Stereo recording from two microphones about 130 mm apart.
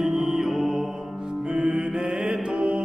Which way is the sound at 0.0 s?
Centre (ahead or behind).